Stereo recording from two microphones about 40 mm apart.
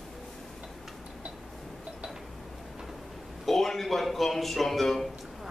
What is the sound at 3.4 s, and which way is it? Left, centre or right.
A man's voice, centre.